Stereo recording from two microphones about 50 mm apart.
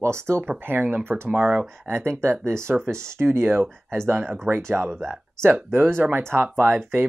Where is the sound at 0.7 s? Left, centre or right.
Right.